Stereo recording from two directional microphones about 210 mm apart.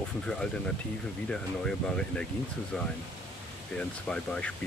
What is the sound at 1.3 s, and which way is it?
Speech, 5° left (ahead or behind).